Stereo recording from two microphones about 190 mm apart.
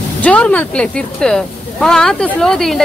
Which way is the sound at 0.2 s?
5° left (ahead or behind).